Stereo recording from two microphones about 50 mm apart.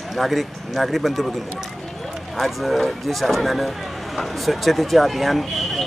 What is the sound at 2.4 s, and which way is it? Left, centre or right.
Speech, centre.